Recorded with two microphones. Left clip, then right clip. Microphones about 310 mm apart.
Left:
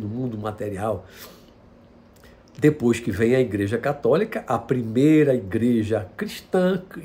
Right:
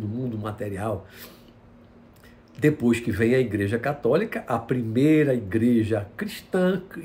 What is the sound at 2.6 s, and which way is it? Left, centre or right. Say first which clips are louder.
Speech: left 2 dB; centre.